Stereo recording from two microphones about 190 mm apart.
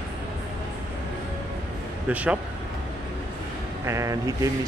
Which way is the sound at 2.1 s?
5° right (ahead or behind).